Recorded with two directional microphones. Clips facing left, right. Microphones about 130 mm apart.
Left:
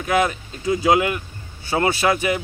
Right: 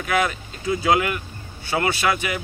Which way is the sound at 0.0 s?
25° left (ahead or behind).